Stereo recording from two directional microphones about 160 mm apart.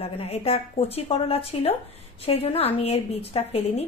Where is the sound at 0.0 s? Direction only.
40° left (ahead or behind).